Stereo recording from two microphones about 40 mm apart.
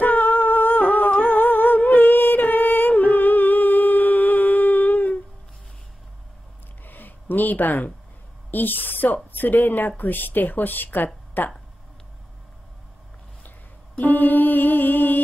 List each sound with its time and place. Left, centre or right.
0.0 s humming: left
6.8 s a sound: left
8.5 s speech: left
13.9 s mantra: left